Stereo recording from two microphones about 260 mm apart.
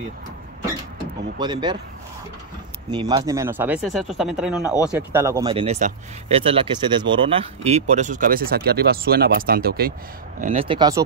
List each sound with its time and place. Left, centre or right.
1.4 s speech: centre
2.9 s speech: centre; by 9.9 s right
10.4 s speech: right